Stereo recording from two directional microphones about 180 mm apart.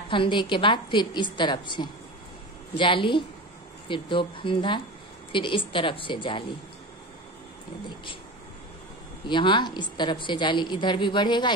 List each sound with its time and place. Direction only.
0.1 s a woman's voice: 25° left (ahead or behind)
9.3 s a woman's voice: 25° left (ahead or behind)